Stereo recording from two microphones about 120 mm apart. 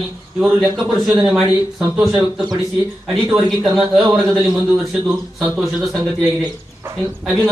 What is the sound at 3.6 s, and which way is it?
Speech, 5° right (ahead or behind).